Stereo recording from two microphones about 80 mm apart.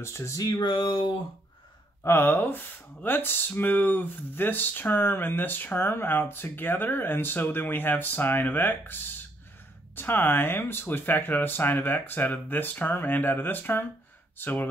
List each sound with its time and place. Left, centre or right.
0.0 s a sound: left
0.6 s speech: left
2.0 s speech: left